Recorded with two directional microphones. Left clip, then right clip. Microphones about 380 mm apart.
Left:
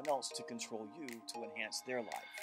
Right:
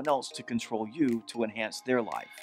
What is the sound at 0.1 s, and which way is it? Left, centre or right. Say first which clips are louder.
Speech: right 9 dB; right.